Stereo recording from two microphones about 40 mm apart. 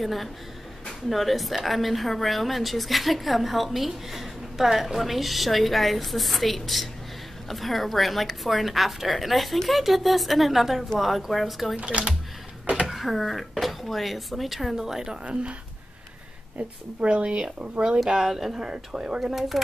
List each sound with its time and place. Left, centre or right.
0.0 s a woman's voice: centre
11.7 s speech: right
12.8 s a woman's voice: centre
17.0 s speech: right
18.2 s speech: centre
19.5 s speech: centre